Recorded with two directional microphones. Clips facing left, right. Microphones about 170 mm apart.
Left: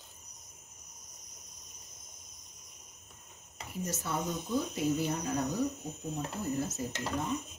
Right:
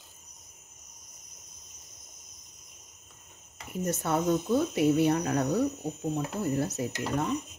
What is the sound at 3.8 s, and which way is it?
Speech, 65° right (ahead or behind).